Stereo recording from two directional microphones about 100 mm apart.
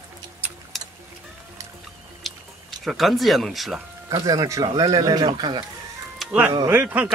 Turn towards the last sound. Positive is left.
turn(degrees=-20)  # may be behind; listen again after turning